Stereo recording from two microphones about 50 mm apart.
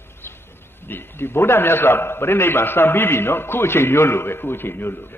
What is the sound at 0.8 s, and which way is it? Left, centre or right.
A man's voice, left.